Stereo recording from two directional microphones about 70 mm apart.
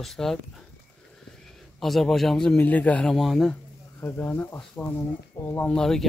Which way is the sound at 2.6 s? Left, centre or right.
Left.